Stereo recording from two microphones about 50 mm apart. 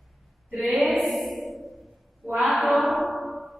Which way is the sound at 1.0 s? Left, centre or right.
Centre.